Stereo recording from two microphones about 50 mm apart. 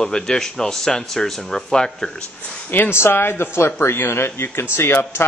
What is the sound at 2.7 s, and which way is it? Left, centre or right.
A man's voice, left.